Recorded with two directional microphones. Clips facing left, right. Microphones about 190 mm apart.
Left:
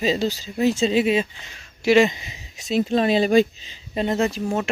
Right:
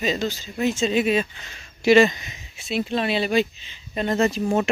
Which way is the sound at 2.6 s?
40° left (ahead or behind).